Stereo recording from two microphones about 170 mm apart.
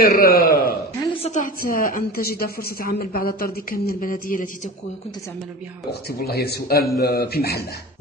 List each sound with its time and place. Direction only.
0.0 s a man's voice: 60° left (ahead or behind)
1.2 s a woman's voice: 50° left (ahead or behind)
5.9 s speech: 65° left (ahead or behind)